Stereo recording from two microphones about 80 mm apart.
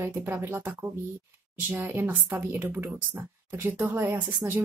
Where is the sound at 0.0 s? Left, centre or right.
Right.